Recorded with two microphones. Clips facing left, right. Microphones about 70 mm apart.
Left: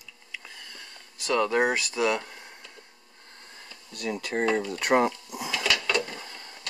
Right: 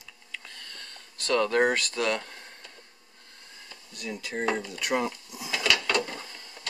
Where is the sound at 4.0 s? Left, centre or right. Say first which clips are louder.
Left 5 dB; left.